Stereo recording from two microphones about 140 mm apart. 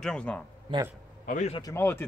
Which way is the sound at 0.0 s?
5° left (ahead or behind).